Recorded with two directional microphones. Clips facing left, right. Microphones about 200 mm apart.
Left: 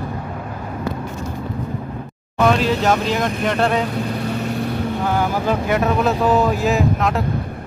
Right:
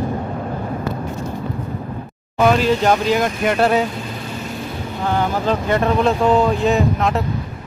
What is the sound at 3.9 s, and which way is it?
Vehicle, 60° left (ahead or behind).